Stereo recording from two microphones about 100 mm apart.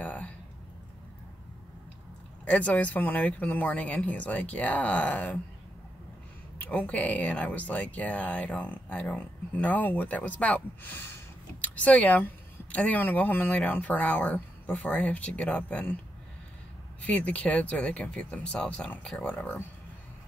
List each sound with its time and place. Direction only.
0.0 s a sound: 15° left (ahead or behind)
2.4 s speech: 15° left (ahead or behind)
6.6 s speech: 15° left (ahead or behind)
17.0 s speech: 15° left (ahead or behind)